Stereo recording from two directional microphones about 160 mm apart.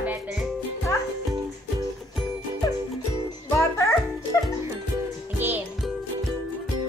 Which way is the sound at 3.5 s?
15° left (ahead or behind).